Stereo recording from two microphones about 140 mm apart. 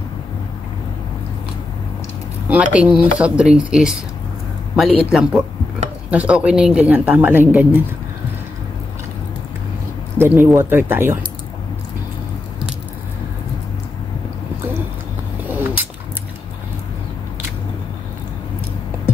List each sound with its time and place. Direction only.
2.4 s a man's voice: 10° right (ahead or behind)
10.3 s speech: 15° right (ahead or behind)
15.4 s a sound: 10° right (ahead or behind)